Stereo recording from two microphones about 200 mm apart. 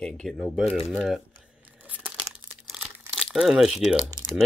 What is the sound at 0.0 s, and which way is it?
Speech, centre (ahead or behind).